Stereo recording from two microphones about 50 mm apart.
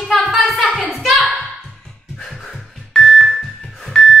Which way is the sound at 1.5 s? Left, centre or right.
Centre.